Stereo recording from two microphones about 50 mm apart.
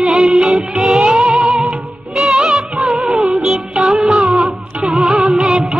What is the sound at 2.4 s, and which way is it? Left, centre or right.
Music of bollywood, centre.